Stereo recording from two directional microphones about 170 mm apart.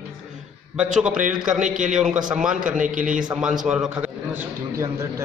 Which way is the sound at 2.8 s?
50° right (ahead or behind).